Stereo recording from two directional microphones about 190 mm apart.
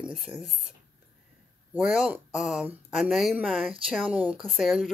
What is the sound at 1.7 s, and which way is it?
Speech, 5° right (ahead or behind).